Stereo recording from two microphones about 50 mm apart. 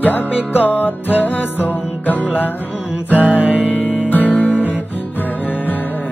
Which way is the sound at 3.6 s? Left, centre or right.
Left.